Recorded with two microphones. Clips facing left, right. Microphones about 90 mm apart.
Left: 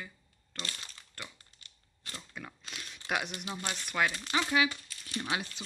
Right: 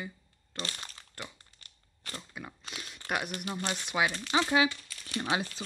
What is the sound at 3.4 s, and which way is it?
Speech, 5° right (ahead or behind).